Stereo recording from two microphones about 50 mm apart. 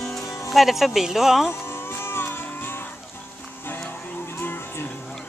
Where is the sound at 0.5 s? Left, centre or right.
Centre.